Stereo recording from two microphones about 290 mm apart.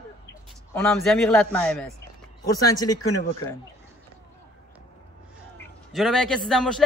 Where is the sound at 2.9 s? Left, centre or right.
Left.